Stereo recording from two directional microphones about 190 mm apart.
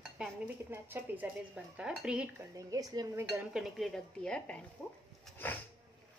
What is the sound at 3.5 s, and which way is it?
Speech, centre (ahead or behind).